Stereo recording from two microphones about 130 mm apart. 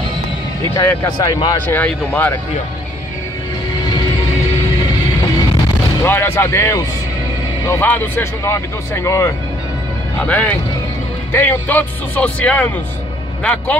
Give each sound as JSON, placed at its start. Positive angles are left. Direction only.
{"t": 0.7, "sound": "speech", "side_deg": 30}
{"t": 1.7, "sound": "speech", "side_deg": 15}
{"t": 6.0, "sound": "speech", "side_deg": 15}
{"t": 10.2, "sound": "speech", "side_deg": 10}